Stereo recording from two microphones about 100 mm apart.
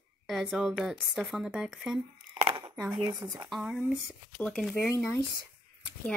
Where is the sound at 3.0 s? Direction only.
35° right (ahead or behind).